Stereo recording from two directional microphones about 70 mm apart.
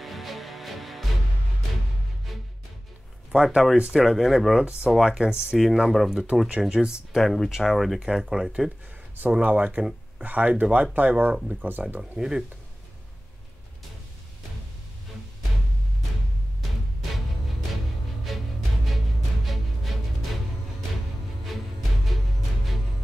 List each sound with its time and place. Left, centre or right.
0.0 s music: centre
3.3 s speech: centre
7.2 s speech: centre
9.4 s speech: right
11.8 s speech: centre
18.3 s music: centre